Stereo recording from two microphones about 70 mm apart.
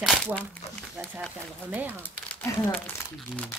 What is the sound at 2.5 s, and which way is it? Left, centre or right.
Speech, left.